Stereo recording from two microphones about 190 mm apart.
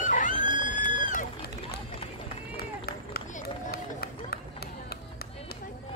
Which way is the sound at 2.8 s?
55° left (ahead or behind).